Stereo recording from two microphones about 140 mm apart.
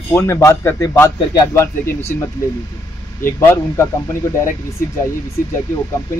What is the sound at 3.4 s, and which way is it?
Speech, 15° left (ahead or behind).